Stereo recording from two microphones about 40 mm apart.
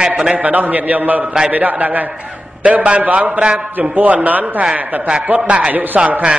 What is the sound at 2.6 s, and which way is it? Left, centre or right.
A man's voice, right.